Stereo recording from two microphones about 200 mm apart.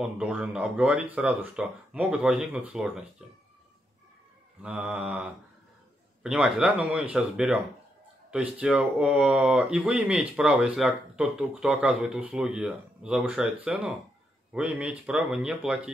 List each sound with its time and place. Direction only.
0.0 s speech: 5° right (ahead or behind)
4.6 s speech: 5° right (ahead or behind)